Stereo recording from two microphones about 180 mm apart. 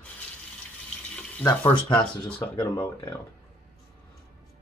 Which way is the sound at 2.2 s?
10° left (ahead or behind).